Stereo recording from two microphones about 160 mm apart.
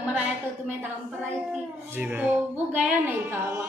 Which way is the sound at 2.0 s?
10° right (ahead or behind).